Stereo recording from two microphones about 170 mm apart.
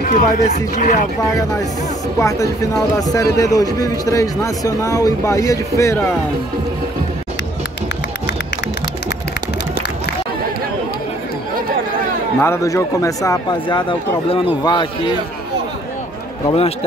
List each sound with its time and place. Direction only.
0.0 s speech: 45° left (ahead or behind)
2.1 s a man's voice: 15° left (ahead or behind)
12.4 s a man's voice: 15° left (ahead or behind)